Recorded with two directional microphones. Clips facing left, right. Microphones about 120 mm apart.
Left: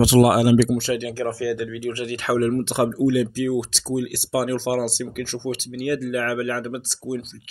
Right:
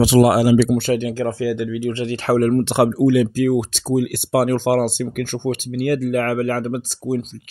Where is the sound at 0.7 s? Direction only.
60° right (ahead or behind).